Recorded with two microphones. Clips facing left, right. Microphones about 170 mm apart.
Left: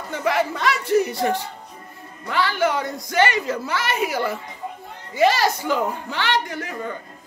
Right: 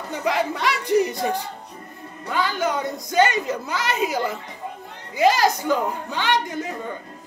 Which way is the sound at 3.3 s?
15° right (ahead or behind).